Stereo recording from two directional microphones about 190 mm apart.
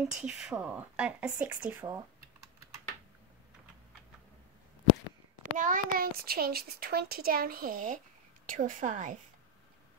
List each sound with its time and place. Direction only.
0.2 s a woman's voice: 5° right (ahead or behind)
5.4 s a child's voice: 45° right (ahead or behind)